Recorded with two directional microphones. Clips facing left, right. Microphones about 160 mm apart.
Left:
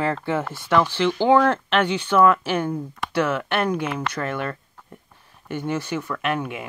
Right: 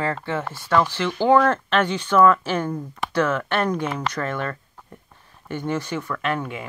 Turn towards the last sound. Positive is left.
turn(degrees=10)  # may be behind; listen again after turning